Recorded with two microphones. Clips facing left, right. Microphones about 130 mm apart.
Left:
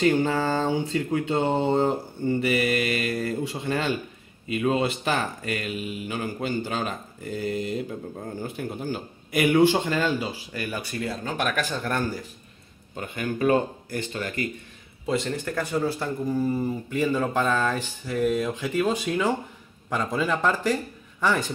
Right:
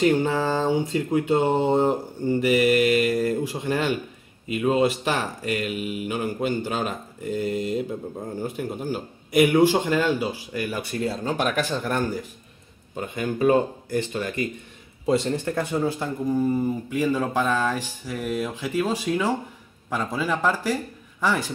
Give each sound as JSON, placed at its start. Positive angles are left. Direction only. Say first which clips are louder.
{"t": 0.0, "sound": "speech", "louder": "right 1 dB", "side_deg": -10}
{"t": 11.1, "sound": "speech", "louder": "right 3 dB", "side_deg": -25}
{"t": 12.9, "sound": "speech", "louder": "right 2 dB", "side_deg": -20}
{"t": 15.0, "sound": "speech", "louder": "right 4 dB", "side_deg": -30}